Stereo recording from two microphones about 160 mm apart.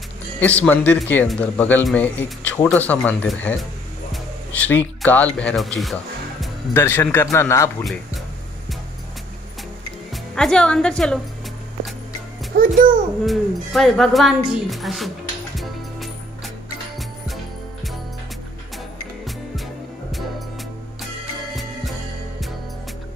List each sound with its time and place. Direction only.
0.4 s speech: 10° left (ahead or behind)
6.7 s speech: 15° left (ahead or behind)
10.1 s a woman's voice: 5° left (ahead or behind)
12.5 s a child's voice: 60° right (ahead or behind)
13.2 s speech: centre (ahead or behind)